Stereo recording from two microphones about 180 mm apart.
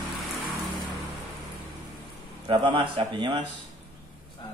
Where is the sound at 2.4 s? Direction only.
25° right (ahead or behind).